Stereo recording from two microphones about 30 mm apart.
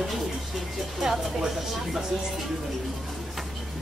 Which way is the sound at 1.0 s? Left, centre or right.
Centre.